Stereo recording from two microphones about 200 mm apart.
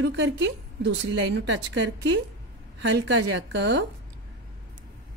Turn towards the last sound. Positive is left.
turn(degrees=-65)  # may be behind; listen again after turning